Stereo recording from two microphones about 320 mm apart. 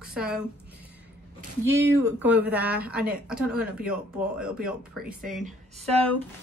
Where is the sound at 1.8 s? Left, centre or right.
Centre.